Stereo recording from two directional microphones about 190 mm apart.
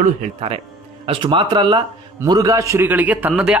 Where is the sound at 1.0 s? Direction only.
25° right (ahead or behind).